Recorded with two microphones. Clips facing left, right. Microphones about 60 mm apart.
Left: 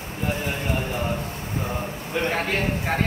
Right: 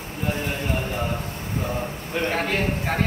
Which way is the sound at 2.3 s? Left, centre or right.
Centre.